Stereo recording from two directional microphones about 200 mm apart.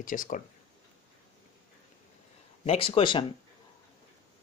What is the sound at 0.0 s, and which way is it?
Speech, 40° left (ahead or behind).